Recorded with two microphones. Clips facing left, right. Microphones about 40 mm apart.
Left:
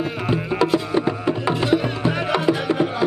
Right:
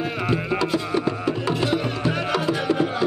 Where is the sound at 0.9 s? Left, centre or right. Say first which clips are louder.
Left 2 dB; centre.